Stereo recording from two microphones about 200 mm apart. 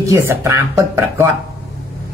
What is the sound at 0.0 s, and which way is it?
Speech, 15° right (ahead or behind).